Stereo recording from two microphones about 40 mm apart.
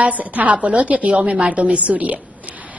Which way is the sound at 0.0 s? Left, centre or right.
Right.